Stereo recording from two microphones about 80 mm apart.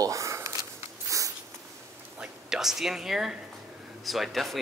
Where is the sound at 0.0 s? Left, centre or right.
Right.